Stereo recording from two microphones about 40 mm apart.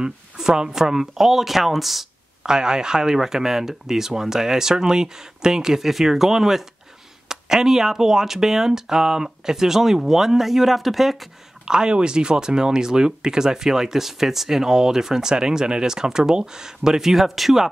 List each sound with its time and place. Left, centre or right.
0.4 s speech: centre
2.4 s speech: centre
11.6 s speech: centre